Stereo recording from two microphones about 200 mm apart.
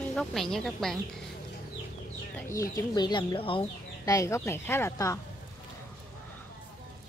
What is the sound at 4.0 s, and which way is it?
A woman's voice, 15° left (ahead or behind).